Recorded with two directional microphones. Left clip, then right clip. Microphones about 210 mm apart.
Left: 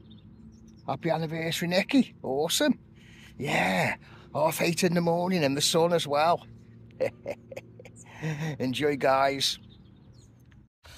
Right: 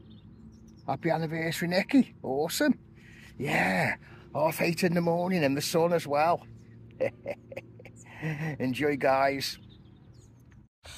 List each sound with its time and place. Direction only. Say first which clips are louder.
0.8 s speech: even; 10° left (ahead or behind)